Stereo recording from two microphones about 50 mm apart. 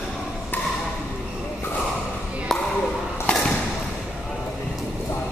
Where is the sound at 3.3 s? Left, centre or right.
Left.